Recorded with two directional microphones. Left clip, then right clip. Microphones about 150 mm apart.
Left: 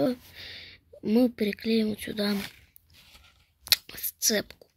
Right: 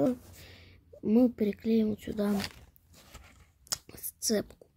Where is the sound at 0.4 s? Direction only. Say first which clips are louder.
Left 11 dB; 10° right (ahead or behind).